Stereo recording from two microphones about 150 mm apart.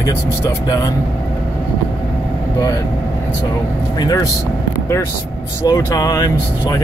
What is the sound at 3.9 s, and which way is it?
Speech, 25° left (ahead or behind).